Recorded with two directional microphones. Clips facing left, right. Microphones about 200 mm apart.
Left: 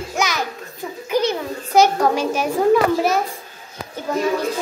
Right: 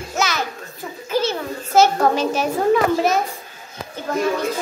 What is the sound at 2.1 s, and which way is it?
Speech, 10° left (ahead or behind).